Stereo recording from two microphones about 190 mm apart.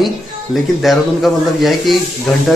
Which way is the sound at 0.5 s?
Centre (ahead or behind).